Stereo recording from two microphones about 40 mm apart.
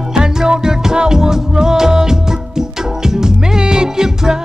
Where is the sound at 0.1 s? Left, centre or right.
Centre.